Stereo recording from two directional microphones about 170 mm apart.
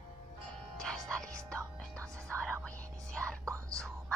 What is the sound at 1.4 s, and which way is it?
Music, 15° right (ahead or behind).